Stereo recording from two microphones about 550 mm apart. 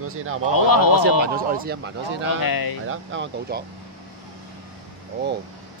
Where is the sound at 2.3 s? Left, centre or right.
Left.